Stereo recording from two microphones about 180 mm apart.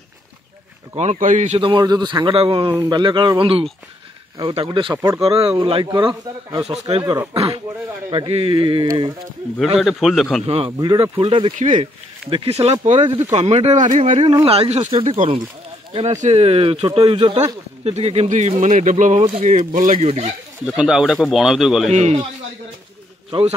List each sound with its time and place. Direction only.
0.9 s speech: 40° right (ahead or behind)
1.6 s a man's voice: 25° right (ahead or behind)
4.9 s speech: 15° right (ahead or behind)
5.2 s a man's voice: 30° right (ahead or behind)
9.8 s speech: centre (ahead or behind)
10.4 s a man's voice: 30° right (ahead or behind)
11.5 s speech: 40° right (ahead or behind); by 17.6 s 25° right (ahead or behind)
17.8 s speech: 35° right (ahead or behind)
20.6 s speech: 5° right (ahead or behind)
21.9 s speech: 40° right (ahead or behind)